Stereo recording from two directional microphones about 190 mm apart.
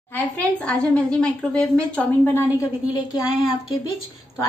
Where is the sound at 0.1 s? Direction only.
5° left (ahead or behind).